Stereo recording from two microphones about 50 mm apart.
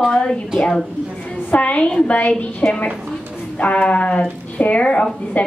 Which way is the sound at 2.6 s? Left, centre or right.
Centre.